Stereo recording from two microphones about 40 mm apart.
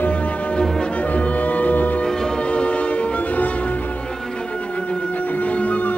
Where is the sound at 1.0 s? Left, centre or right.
Left.